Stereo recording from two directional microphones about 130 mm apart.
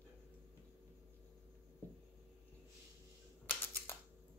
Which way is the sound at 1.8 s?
15° left (ahead or behind).